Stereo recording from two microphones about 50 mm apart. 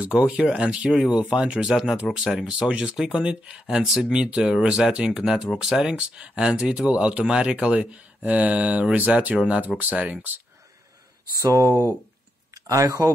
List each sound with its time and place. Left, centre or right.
0.0 s speech: right
0.3 s speech: centre
1.1 s speech: right
1.6 s speech: centre; by 10.3 s right
11.3 s speech: right